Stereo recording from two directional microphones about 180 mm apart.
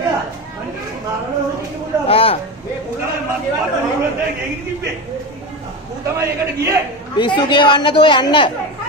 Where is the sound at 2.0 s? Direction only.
30° left (ahead or behind).